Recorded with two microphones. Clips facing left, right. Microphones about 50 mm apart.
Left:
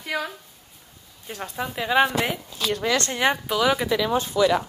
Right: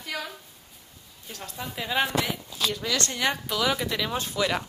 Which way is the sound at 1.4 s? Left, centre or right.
Centre.